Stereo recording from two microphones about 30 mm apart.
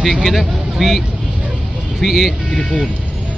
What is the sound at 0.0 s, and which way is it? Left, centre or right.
Speech, centre.